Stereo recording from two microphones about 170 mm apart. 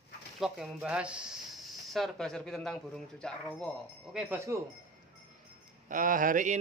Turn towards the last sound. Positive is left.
turn(degrees=-50)  # may be behind; listen again after turning